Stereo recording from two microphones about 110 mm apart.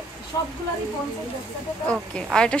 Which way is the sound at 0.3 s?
35° left (ahead or behind).